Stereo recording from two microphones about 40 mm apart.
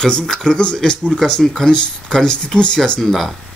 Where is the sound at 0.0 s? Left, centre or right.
Centre.